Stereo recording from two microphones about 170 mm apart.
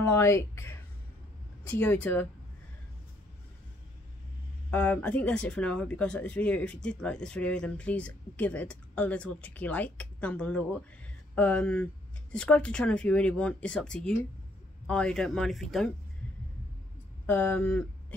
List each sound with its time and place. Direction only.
0.0 s speech: 15° left (ahead or behind)
4.6 s speech: 10° left (ahead or behind)
17.3 s speech: 10° left (ahead or behind)